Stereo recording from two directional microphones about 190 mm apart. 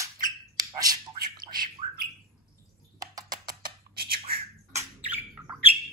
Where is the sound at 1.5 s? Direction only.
50° right (ahead or behind).